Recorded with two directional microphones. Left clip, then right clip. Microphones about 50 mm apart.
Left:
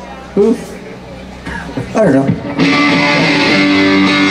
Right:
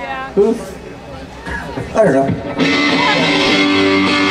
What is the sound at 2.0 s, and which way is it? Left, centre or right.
Speech, centre.